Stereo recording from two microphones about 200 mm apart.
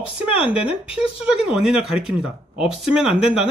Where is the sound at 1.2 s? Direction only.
5° right (ahead or behind).